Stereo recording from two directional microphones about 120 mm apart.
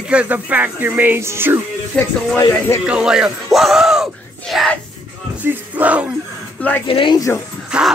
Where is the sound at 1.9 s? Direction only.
10° left (ahead or behind).